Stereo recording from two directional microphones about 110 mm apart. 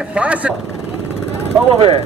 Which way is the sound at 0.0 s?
10° right (ahead or behind).